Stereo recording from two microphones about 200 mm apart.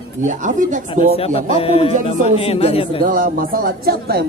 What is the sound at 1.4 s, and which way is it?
Speech, 30° left (ahead or behind).